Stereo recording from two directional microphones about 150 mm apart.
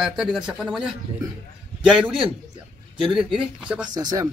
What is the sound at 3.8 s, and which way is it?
Speech, 30° right (ahead or behind).